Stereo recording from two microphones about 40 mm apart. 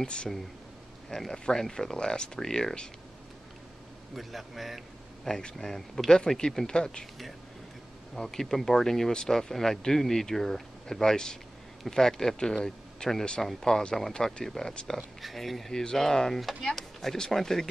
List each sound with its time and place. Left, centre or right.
0.0 s speech: left
1.1 s speech: centre
4.1 s a man's voice: centre; by 7.1 s left
8.2 s speech: centre
15.7 s speech: centre